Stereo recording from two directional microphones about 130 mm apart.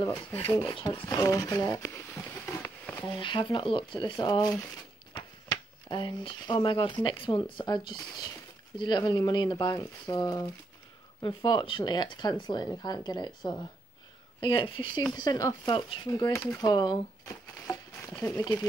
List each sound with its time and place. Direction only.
0.5 s speech: 20° left (ahead or behind)
0.7 s speech: 40° left (ahead or behind)
1.0 s speech: 25° left (ahead or behind)
2.4 s a sound: 15° left (ahead or behind)
3.2 s speech: 40° left (ahead or behind)
15.1 s speech: 30° left (ahead or behind)
16.1 s speech: 25° left (ahead or behind)
16.6 s speech: 35° left (ahead or behind)
17.6 s a sound: 20° left (ahead or behind)
18.4 s speech: 30° left (ahead or behind)